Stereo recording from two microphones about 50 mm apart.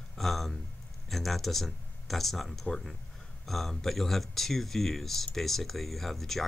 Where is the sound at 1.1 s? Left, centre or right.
Centre.